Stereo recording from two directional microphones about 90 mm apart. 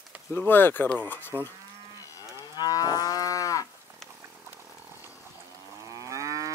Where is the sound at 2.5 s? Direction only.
45° left (ahead or behind).